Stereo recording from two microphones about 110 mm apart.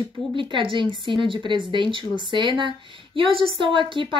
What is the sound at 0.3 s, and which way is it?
Speech, 45° right (ahead or behind).